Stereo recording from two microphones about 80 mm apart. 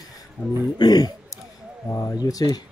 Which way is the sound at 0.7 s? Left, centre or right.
Left.